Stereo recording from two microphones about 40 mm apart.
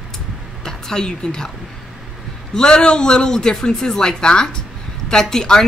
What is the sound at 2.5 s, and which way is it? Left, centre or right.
Speech, left.